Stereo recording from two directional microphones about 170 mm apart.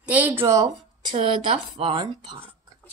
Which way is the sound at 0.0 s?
10° right (ahead or behind).